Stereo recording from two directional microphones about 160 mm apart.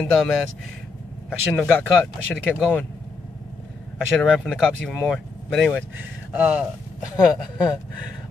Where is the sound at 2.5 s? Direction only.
Centre (ahead or behind).